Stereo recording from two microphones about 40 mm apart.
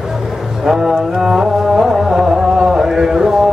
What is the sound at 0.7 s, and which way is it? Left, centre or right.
Music, centre.